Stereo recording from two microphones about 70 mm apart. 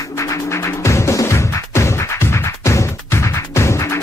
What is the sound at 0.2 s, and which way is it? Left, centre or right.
Music, left.